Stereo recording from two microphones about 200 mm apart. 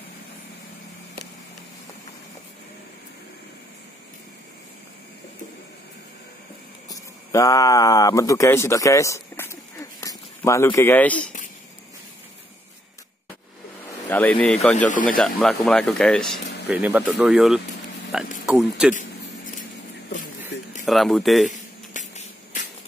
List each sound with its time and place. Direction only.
6.9 s a sound: 15° left (ahead or behind)
14.0 s speech: 10° left (ahead or behind)
14.9 s speech: 40° left (ahead or behind)
15.1 s speech: centre (ahead or behind)
20.8 s speech: centre (ahead or behind)
21.5 s a sound: 40° left (ahead or behind)